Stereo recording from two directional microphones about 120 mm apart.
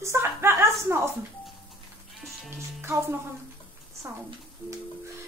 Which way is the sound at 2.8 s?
20° right (ahead or behind).